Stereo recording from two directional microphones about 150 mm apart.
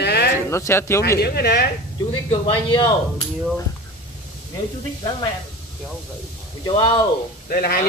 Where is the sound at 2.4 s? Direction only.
30° left (ahead or behind).